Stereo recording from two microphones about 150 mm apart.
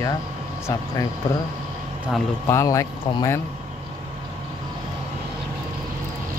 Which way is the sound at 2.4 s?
20° left (ahead or behind).